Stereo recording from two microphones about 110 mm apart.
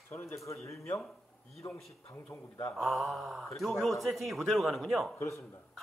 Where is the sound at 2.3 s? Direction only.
20° left (ahead or behind).